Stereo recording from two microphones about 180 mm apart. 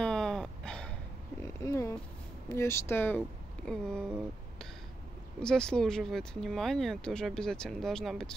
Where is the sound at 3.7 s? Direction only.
5° left (ahead or behind).